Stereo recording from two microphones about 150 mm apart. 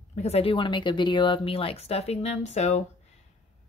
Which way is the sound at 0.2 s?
40° left (ahead or behind).